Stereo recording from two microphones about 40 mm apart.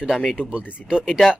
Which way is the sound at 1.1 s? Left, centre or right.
Centre.